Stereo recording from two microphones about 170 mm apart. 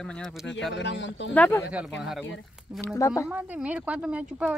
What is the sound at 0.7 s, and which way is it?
Speech, 90° left.